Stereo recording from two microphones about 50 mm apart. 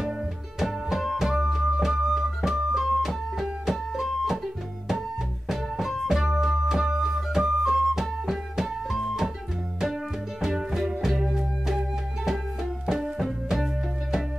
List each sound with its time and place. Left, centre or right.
0.6 s music: centre
5.5 s music: centre
10.4 s music: centre
12.8 s music: centre